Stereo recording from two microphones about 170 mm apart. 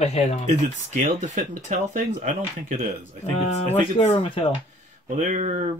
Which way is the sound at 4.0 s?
40° left (ahead or behind).